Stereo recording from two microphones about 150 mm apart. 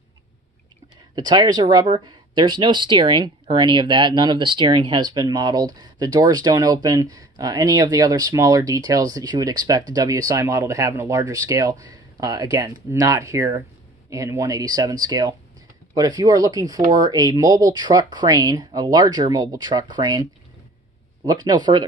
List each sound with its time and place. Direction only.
1.1 s speech: 30° right (ahead or behind)